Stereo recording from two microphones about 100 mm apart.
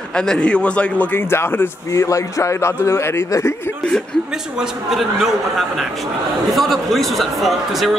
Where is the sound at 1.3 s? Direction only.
25° left (ahead or behind).